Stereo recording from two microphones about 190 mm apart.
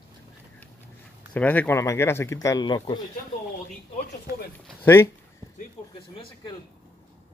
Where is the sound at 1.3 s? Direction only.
10° left (ahead or behind).